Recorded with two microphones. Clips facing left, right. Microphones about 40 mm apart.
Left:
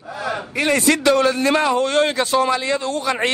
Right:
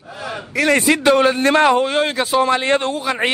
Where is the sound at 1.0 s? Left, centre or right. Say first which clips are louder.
Right 4 dB; right.